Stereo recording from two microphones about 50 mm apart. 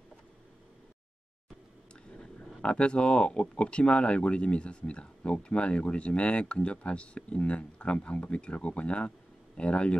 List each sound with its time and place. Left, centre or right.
2.1 s speech: left